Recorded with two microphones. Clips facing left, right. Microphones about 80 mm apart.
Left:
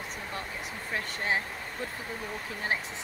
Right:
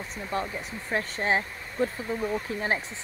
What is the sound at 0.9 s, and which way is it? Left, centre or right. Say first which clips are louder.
Speech: right 5 dB; right.